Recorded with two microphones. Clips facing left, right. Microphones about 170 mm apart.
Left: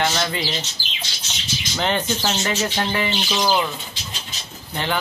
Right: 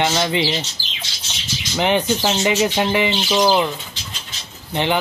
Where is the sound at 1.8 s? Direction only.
15° right (ahead or behind).